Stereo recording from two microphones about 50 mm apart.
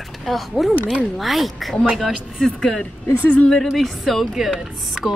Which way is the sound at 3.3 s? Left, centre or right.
Left.